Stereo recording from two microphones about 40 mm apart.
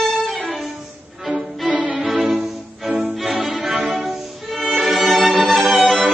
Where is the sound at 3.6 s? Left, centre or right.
Centre.